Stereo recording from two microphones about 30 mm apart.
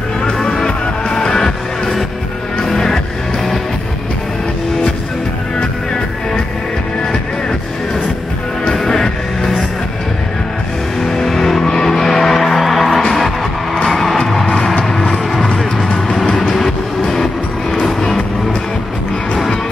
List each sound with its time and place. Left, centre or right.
0.7 s music: left
2.6 s music: centre
5.6 s music: left
8.7 s music: centre
11.0 s music: centre
15.0 s music: centre